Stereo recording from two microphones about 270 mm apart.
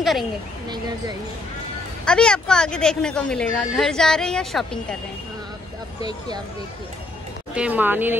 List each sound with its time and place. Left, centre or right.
0.7 s speech: centre
2.0 s speech: centre
5.9 s speech: centre
7.5 s speech: centre